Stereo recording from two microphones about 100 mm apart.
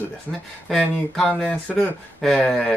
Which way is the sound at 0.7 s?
5° left (ahead or behind).